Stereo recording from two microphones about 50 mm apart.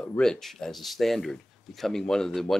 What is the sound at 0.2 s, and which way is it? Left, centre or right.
Speech, centre.